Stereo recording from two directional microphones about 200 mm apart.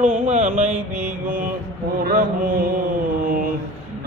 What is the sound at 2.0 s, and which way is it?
Mantra, 45° right (ahead or behind).